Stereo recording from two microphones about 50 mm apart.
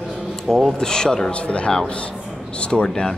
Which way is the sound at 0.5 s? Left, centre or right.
Centre.